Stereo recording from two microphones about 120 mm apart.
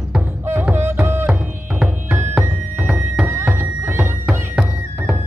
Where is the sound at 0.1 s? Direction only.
15° right (ahead or behind).